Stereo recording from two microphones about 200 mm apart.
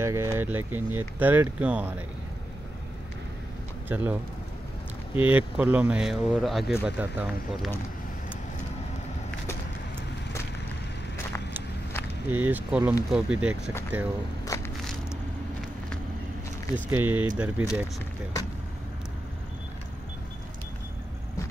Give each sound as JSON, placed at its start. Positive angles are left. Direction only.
{"t": 0.0, "sound": "speech", "side_deg": -15}
{"t": 3.9, "sound": "speech", "side_deg": -10}
{"t": 5.2, "sound": "speech", "side_deg": -10}
{"t": 12.3, "sound": "speech", "side_deg": -10}
{"t": 14.4, "sound": "a sound", "side_deg": 15}
{"t": 16.7, "sound": "speech", "side_deg": -10}